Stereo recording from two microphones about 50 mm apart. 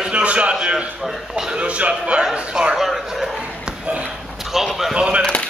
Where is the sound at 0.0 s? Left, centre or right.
Right.